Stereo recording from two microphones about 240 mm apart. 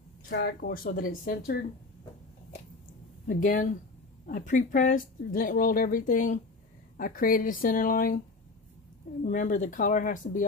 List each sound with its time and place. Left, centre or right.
0.3 s speech: left
3.3 s speech: left
9.2 s speech: left